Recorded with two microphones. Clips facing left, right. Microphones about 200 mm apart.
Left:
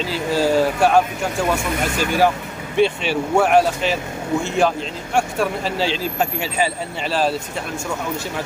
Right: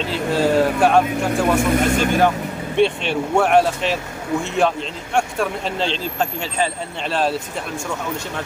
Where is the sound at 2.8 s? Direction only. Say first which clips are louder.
Even; centre (ahead or behind).